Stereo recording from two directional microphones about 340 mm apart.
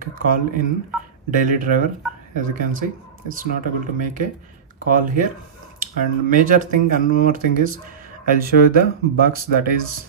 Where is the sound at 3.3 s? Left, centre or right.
Right.